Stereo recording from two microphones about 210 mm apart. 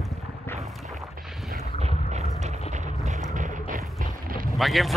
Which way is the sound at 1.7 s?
30° right (ahead or behind).